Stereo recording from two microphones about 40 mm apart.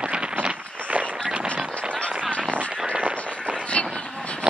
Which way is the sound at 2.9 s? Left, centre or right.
Right.